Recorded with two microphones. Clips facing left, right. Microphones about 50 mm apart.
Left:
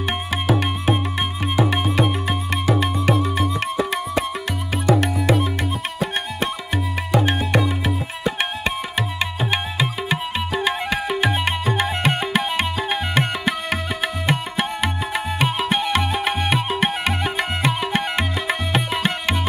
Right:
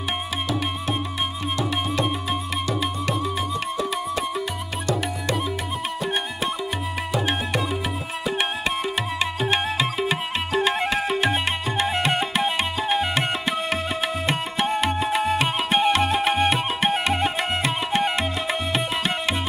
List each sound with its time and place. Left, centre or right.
1.6 s music: centre
5.2 s music: centre
9.4 s music: centre
12.5 s music: left
15.4 s music: right
17.4 s music: left